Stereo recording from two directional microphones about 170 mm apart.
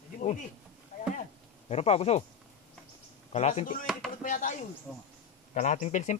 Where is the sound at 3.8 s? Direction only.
Centre (ahead or behind).